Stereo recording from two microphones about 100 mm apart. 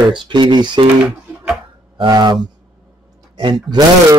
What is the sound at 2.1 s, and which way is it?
Speech, 45° right (ahead or behind).